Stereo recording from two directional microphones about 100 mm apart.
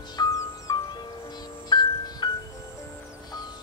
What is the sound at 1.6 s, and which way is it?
Music, 50° left (ahead or behind).